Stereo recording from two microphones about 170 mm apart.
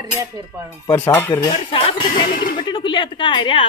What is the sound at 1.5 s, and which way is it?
A woman's voice, 30° left (ahead or behind).